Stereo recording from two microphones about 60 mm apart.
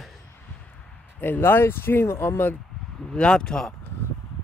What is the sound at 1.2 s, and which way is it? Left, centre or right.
Speech, left.